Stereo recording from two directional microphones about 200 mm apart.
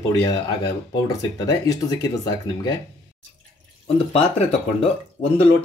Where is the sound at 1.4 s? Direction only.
20° left (ahead or behind).